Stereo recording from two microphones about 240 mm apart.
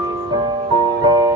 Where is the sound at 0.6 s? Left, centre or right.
Centre.